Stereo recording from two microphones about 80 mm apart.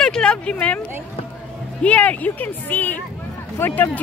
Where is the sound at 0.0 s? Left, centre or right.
Centre.